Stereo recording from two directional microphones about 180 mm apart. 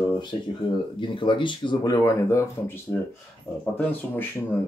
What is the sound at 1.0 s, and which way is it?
Speech, 25° left (ahead or behind).